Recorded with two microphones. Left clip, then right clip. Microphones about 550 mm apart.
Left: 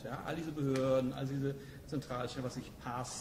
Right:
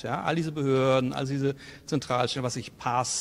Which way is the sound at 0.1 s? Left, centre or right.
Right.